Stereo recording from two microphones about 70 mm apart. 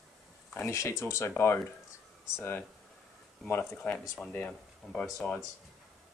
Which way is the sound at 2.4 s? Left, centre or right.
Left.